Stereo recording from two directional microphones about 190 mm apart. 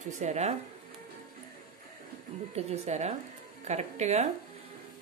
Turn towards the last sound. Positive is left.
turn(degrees=-35)  # may be behind; listen again after turning